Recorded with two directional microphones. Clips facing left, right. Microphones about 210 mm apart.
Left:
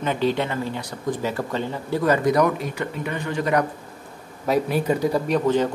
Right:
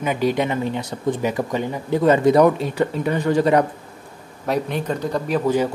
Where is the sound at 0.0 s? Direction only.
10° right (ahead or behind); by 3.6 s 35° right (ahead or behind).